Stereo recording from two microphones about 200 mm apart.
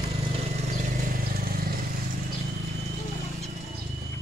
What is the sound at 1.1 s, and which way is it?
Vehicle, 50° right (ahead or behind).